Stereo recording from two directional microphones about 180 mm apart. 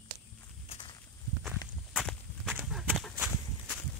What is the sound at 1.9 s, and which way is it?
Walk, centre (ahead or behind).